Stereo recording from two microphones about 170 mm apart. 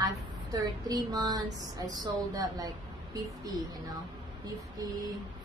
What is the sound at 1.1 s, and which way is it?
A woman's voice, 25° right (ahead or behind).